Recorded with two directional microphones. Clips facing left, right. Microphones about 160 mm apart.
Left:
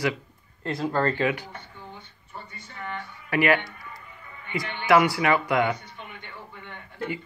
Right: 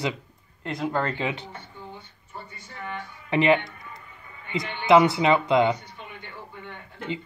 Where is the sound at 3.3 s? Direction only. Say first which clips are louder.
Right 2 dB; 20° right (ahead or behind).